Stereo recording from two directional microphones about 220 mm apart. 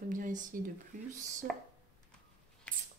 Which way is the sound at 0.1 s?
35° right (ahead or behind).